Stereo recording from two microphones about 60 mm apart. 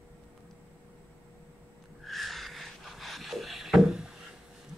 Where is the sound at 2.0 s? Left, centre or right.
Centre.